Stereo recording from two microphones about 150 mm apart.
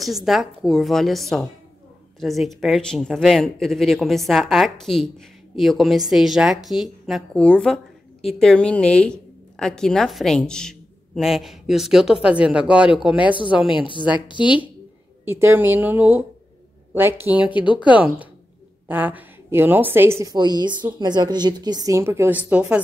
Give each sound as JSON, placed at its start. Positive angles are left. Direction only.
{"t": 0.0, "sound": "a woman's voice", "side_deg": 0}
{"t": 13.7, "sound": "a woman's voice", "side_deg": 30}
{"t": 15.2, "sound": "a woman's voice", "side_deg": -15}
{"t": 17.6, "sound": "a woman's voice", "side_deg": 35}
{"t": 17.8, "sound": "a woman's voice", "side_deg": -10}